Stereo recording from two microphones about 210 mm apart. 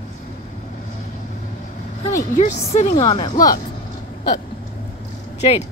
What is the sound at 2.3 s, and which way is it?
Speech, 35° left (ahead or behind).